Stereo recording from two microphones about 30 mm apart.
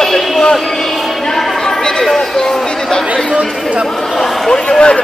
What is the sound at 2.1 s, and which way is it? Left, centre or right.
Speech, centre.